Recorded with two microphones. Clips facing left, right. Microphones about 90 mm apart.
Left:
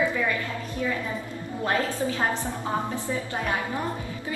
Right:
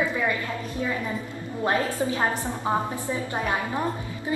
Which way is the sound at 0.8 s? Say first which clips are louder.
Even; 25° right (ahead or behind).